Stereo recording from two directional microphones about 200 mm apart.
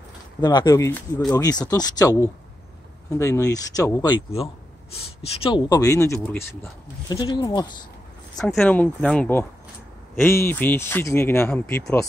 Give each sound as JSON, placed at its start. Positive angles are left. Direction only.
{"t": 0.4, "sound": "speech", "side_deg": 20}
{"t": 8.5, "sound": "speech", "side_deg": 5}